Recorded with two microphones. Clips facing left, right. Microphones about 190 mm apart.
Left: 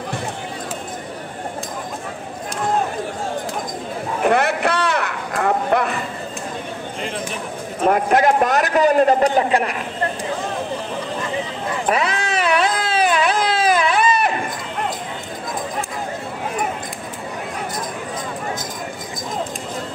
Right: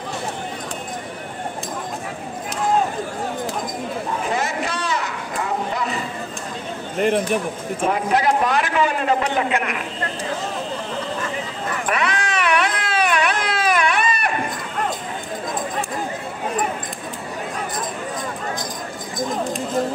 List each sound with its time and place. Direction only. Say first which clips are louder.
4.2 s a sound: left 10 dB; 60° left (ahead or behind)
7.9 s a man's voice: left 4 dB; 50° left (ahead or behind)
11.8 s baby cry: left 3 dB; 30° left (ahead or behind)